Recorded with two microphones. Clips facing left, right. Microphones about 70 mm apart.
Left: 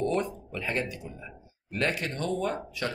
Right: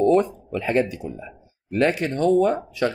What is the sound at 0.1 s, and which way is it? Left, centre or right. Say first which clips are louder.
Speech: right 10 dB; right.